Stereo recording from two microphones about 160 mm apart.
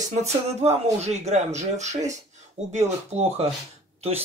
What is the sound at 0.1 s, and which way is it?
Speech, 45° right (ahead or behind).